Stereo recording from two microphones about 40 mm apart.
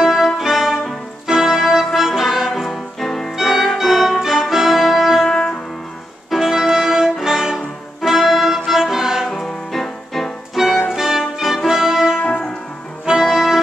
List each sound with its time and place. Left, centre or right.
0.0 s music: centre
2.5 s music: centre
3.3 s music: centre
5.3 s music: centre
6.4 s music: centre
9.3 s music: centre
10.5 s music: centre
12.2 s music: left
13.0 s music: centre